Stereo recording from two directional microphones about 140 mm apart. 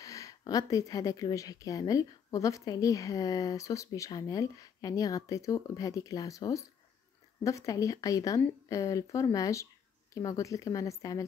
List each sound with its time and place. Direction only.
0.0 s speech: 25° left (ahead or behind)